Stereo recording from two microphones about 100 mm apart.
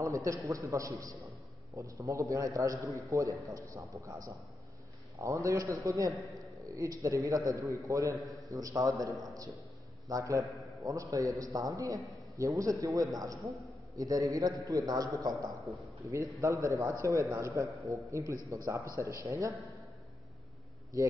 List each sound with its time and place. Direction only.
0.0 s a man's voice: 30° right (ahead or behind)
10.0 s a man's voice: 35° right (ahead or behind)
10.4 s a sound: centre (ahead or behind)
10.8 s a man's voice: 35° right (ahead or behind)
15.7 s a man's voice: centre (ahead or behind)
16.1 s a man's voice: 30° right (ahead or behind)